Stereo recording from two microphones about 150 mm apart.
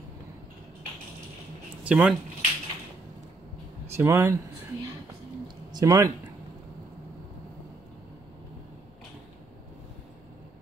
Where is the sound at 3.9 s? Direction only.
15° right (ahead or behind).